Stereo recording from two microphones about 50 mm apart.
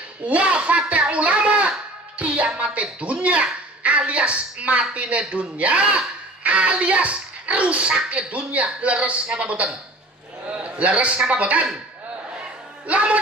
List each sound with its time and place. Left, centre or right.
0.3 s a child's voice: right
12.8 s a child's voice: right